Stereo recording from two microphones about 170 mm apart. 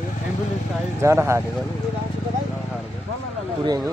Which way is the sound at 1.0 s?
15° right (ahead or behind).